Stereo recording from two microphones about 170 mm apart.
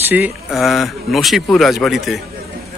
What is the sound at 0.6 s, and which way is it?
A man's voice, centre (ahead or behind).